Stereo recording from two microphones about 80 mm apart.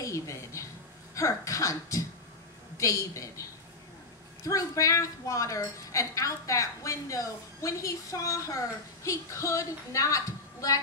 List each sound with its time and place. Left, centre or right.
0.0 s a woman's voice: left
4.5 s a woman's voice: left